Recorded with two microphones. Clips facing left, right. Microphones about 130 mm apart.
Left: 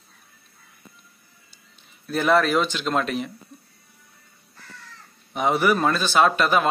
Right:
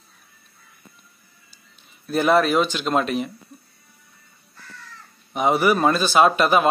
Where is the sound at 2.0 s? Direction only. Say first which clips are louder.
Right 2 dB; 15° right (ahead or behind).